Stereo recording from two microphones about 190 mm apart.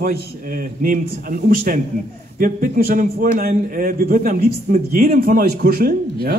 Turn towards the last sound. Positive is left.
turn(degrees=-50)  # may be behind; listen again after turning